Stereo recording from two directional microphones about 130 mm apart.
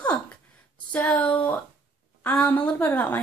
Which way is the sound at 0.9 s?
10° left (ahead or behind).